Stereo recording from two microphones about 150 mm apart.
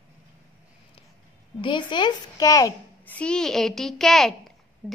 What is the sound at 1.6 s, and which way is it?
A child's voice, 30° left (ahead or behind).